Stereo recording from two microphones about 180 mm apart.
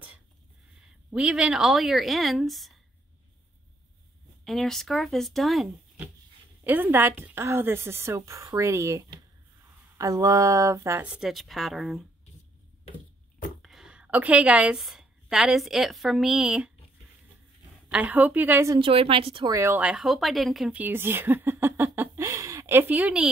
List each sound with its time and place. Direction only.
1.1 s speech: 5° right (ahead or behind)
4.5 s speech: centre (ahead or behind)
13.6 s a woman's voice: centre (ahead or behind)
17.9 s speech: 10° right (ahead or behind)
18.8 s speech: 30° right (ahead or behind); by 23.2 s 10° right (ahead or behind)